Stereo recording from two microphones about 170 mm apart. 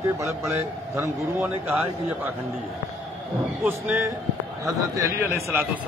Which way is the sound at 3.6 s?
15° right (ahead or behind).